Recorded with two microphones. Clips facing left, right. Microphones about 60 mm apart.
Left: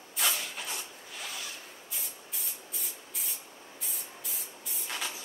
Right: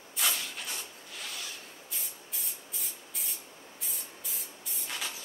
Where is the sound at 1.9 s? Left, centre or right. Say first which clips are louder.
Left 1 dB; centre.